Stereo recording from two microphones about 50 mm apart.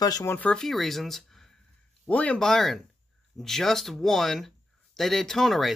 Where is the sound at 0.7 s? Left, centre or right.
Centre.